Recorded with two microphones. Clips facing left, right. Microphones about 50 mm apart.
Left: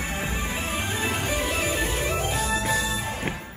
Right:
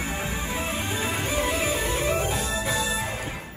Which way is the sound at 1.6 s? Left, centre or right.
Centre.